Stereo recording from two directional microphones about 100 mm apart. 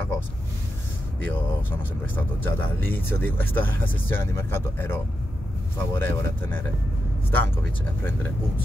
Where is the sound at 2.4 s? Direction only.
20° left (ahead or behind).